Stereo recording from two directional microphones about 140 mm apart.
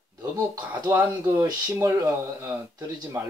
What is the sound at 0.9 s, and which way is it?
Speech, 15° right (ahead or behind).